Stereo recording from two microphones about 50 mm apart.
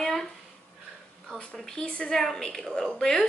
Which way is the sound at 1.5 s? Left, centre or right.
Centre.